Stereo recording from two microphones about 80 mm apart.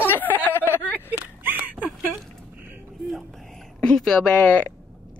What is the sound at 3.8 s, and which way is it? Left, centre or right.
Speech, centre.